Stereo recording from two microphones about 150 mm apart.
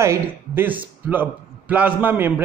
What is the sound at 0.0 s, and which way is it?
A man's voice, 15° right (ahead or behind).